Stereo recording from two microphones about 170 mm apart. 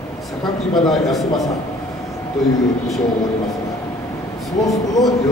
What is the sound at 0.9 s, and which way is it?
Speech, centre (ahead or behind).